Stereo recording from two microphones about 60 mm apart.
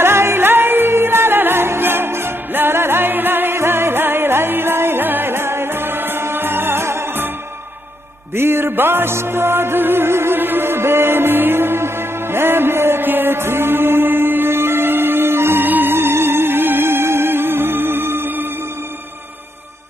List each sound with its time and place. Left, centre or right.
0.0 s music: right
8.4 s music: right